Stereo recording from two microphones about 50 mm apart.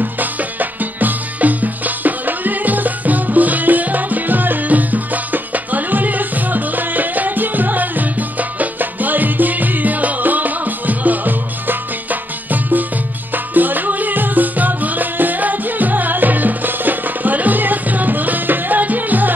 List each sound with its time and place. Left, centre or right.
0.0 s music: right